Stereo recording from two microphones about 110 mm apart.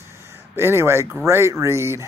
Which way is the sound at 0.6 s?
20° right (ahead or behind).